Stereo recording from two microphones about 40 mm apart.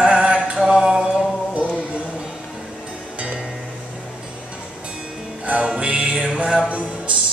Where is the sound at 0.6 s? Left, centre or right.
Centre.